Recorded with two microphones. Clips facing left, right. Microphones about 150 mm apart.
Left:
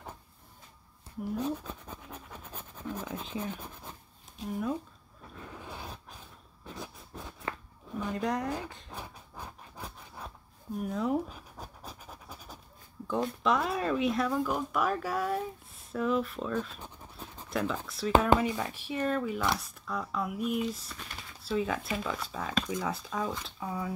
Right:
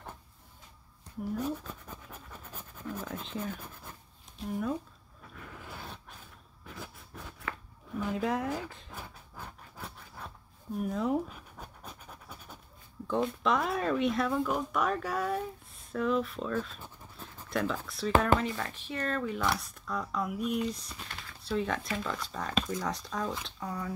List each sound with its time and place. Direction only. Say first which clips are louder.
1.6 s scratch: left 2 dB; 15° left (ahead or behind)
3.5 s writing: left 2 dB; 15° left (ahead or behind)
4.5 s speech: even; centre (ahead or behind)
5.3 s a sound: left 2 dB; 20° left (ahead or behind)
8.0 s speech: right 1 dB; 5° right (ahead or behind)
8.9 s a sound: left 2 dB; 15° left (ahead or behind)
9.8 s a sound: even; 5° left (ahead or behind)
10.8 s speech: even; centre (ahead or behind)
12.1 s pant: left 1 dB; 10° left (ahead or behind)
13.0 s speech: even; centre (ahead or behind)
17.5 s a sound: even; centre (ahead or behind)
17.8 s speech: even; centre (ahead or behind)
18.3 s speech: left 2 dB; 15° left (ahead or behind)